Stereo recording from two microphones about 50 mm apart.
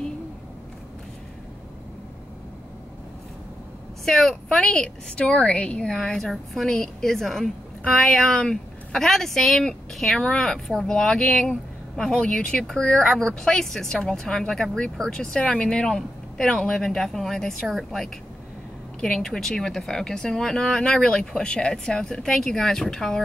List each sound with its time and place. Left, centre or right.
4.0 s speech: centre; by 5.9 s left
5.9 s a woman's voice: centre